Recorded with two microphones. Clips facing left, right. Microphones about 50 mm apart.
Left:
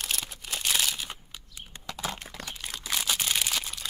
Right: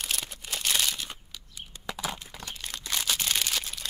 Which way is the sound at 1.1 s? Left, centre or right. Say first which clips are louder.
Even; left.